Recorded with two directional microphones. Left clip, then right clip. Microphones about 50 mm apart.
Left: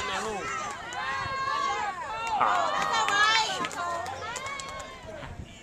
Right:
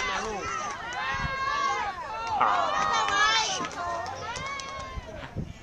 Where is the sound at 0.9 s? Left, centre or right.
Right.